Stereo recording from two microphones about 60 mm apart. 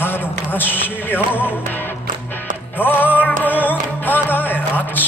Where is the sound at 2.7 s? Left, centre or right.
Left.